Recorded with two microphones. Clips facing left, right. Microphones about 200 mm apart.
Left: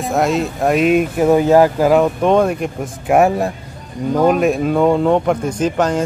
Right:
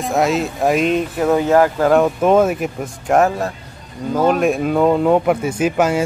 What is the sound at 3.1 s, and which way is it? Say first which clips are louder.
Speech: left 2 dB; 10° left (ahead or behind).